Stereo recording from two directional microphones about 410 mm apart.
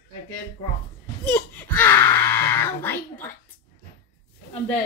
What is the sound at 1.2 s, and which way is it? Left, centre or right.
Speech, centre.